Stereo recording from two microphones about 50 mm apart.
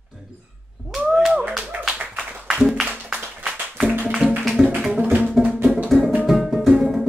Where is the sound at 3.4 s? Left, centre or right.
Right.